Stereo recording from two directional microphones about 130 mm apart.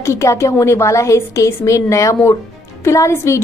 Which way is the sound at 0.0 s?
20° left (ahead or behind).